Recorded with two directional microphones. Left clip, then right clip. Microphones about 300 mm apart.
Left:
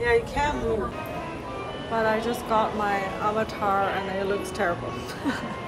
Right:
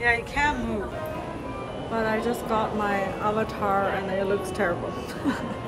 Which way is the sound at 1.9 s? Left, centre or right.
Centre.